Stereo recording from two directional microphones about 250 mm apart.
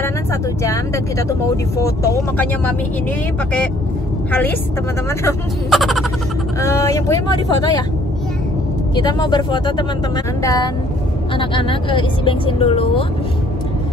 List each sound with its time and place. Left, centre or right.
0.0 s speech: centre
4.3 s speech: centre
5.7 s speech: centre
6.6 s speech: centre
8.9 s speech: centre